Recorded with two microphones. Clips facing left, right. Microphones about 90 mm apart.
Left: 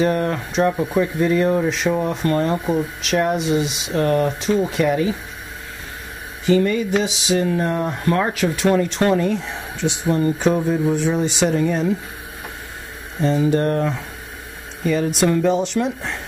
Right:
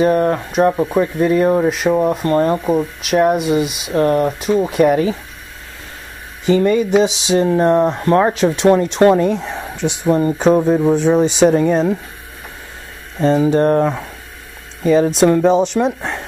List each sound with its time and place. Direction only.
0.0 s speech: 25° right (ahead or behind)
3.9 s speech: 25° right (ahead or behind)
4.3 s speech: 10° right (ahead or behind)
4.7 s speech: 45° right (ahead or behind)
6.4 s speech: 25° right (ahead or behind)
11.1 s speech: 20° right (ahead or behind)
11.5 s speech: 40° right (ahead or behind)
13.4 s speech: 20° right (ahead or behind)
14.9 s speech: 30° right (ahead or behind)